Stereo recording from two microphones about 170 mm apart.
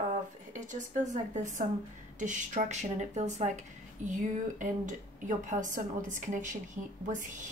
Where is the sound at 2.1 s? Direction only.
50° right (ahead or behind).